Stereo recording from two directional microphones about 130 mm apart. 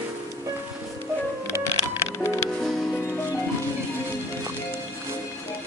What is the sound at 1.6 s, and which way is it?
Music, 20° left (ahead or behind).